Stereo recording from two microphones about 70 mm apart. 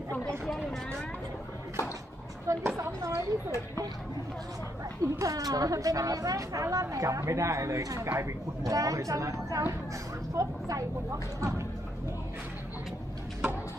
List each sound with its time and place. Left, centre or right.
2.4 s a sound: right
5.0 s a woman's voice: right
8.1 s speech: right
8.6 s a woman's voice: right